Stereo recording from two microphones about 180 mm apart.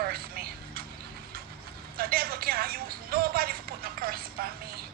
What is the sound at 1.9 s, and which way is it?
Music, 55° right (ahead or behind).